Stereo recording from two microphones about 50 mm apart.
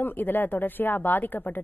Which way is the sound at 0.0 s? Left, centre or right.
Left.